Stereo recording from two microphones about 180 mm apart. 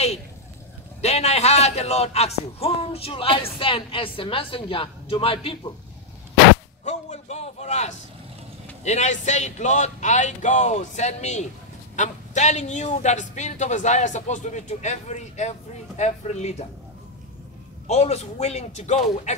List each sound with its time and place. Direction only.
1.0 s speech: 35° left (ahead or behind)
6.8 s a man's voice: 40° left (ahead or behind)
17.8 s speech: 35° left (ahead or behind)